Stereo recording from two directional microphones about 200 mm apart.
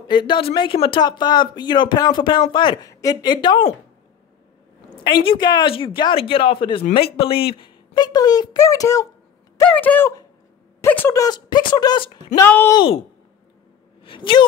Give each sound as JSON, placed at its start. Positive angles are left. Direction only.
{"t": 0.0, "sound": "speech", "side_deg": 25}
{"t": 5.2, "sound": "speech", "side_deg": 25}
{"t": 12.4, "sound": "speech", "side_deg": 10}
{"t": 12.7, "sound": "speech", "side_deg": 25}
{"t": 14.0, "sound": "speech", "side_deg": 25}